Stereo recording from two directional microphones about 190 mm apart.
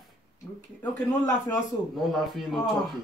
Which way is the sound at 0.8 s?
15° left (ahead or behind).